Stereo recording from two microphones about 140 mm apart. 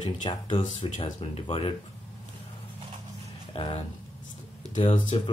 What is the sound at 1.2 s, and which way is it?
Speech, 45° left (ahead or behind).